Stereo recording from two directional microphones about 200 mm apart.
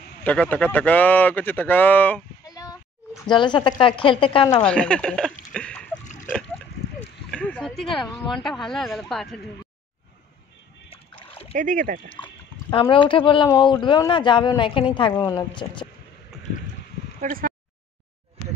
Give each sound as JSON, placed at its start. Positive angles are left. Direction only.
{"t": 0.2, "sound": "a woman's voice", "side_deg": 10}
{"t": 4.6, "sound": "speech", "side_deg": 5}
{"t": 5.5, "sound": "a sound", "side_deg": 5}
{"t": 6.0, "sound": "a sound", "side_deg": 40}
{"t": 7.2, "sound": "speech", "side_deg": 5}
{"t": 11.5, "sound": "speech", "side_deg": -40}
{"t": 12.1, "sound": "speech", "side_deg": 25}
{"t": 17.2, "sound": "speech", "side_deg": -45}